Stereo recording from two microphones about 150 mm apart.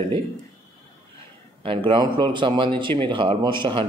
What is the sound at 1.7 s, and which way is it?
Speech, 35° right (ahead or behind).